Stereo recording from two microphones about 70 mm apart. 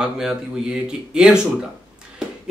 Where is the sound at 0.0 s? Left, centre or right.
Centre.